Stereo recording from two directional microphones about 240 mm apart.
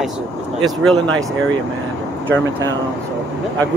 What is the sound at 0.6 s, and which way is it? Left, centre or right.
Speech, centre.